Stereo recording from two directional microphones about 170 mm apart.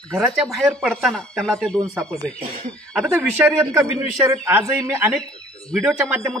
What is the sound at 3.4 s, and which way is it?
Speech, 10° right (ahead or behind).